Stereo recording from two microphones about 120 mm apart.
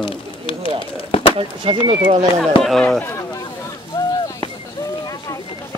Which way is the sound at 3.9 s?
35° left (ahead or behind).